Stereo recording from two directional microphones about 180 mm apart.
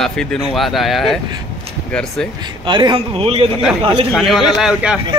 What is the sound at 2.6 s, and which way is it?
A man's voice, 25° right (ahead or behind).